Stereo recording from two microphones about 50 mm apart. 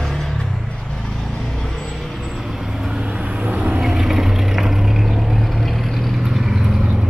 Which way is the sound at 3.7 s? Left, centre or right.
Centre.